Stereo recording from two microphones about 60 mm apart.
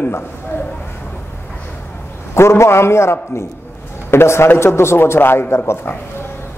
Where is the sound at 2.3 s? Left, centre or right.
Left.